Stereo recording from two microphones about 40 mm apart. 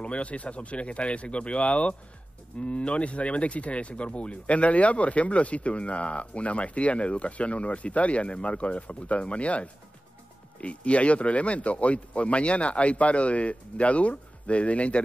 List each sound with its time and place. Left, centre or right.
0.0 s speech: left